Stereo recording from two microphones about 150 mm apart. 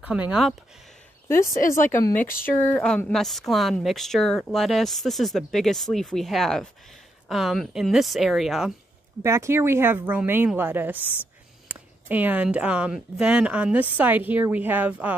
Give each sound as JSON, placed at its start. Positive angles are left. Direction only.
{"t": 0.0, "sound": "speech", "side_deg": -10}
{"t": 1.9, "sound": "speech", "side_deg": 20}
{"t": 3.1, "sound": "speech", "side_deg": 0}
{"t": 9.2, "sound": "speech", "side_deg": -20}